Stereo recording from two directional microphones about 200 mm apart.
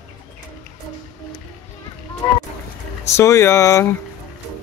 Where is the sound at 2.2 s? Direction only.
20° left (ahead or behind).